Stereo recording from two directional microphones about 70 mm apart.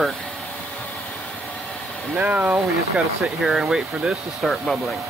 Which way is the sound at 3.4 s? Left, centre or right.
Centre.